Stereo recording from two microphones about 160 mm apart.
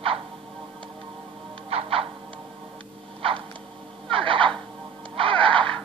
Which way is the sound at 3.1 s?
35° right (ahead or behind).